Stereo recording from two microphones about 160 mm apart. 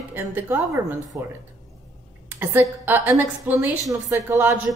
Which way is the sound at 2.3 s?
10° right (ahead or behind).